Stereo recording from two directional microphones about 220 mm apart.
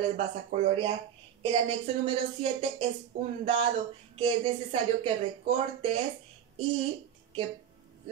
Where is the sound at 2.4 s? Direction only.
25° right (ahead or behind).